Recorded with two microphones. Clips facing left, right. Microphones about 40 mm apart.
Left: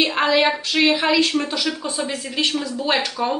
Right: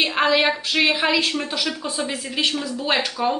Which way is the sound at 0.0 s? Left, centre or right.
Centre.